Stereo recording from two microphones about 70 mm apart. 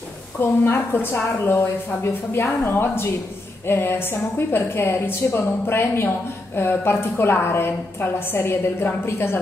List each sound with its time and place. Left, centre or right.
0.4 s a woman's voice: left